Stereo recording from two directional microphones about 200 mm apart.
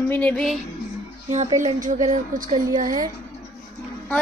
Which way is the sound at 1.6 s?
40° right (ahead or behind).